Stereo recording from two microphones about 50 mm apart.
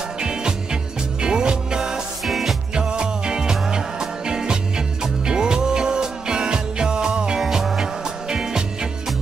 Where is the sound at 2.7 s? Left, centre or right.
Centre.